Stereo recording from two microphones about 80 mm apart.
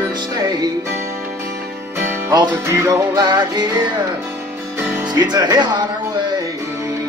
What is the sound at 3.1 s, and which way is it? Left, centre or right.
Music, right.